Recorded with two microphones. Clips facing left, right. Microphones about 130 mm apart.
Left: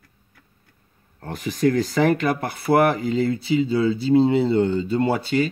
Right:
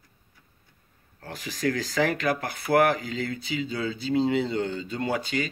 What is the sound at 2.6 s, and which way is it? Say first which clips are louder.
Speech: left 4 dB; 30° left (ahead or behind).